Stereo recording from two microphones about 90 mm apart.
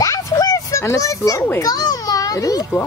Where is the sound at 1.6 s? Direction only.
45° left (ahead or behind).